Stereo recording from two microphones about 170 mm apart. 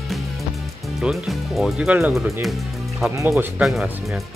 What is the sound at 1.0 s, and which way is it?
Speech, centre (ahead or behind).